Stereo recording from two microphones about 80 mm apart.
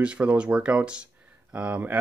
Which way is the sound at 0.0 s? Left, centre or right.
Centre.